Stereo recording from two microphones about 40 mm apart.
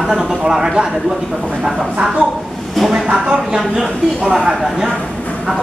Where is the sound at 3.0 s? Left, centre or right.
Centre.